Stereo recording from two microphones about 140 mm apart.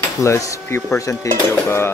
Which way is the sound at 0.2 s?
20° left (ahead or behind).